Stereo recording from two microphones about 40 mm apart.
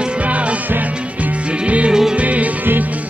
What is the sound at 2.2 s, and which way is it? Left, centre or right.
Music, right.